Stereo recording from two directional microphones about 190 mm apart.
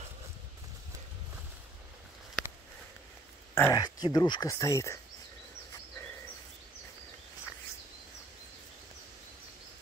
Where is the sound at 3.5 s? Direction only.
15° left (ahead or behind).